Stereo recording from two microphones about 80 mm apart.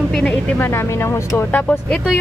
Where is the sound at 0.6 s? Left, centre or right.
Left.